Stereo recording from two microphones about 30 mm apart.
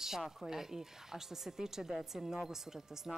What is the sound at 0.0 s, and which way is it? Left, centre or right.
Speech, centre.